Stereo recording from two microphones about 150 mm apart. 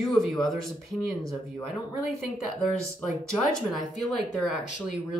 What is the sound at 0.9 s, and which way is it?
Speech, centre (ahead or behind).